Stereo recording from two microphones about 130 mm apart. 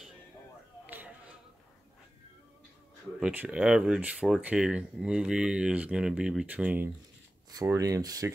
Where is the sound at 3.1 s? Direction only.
10° right (ahead or behind).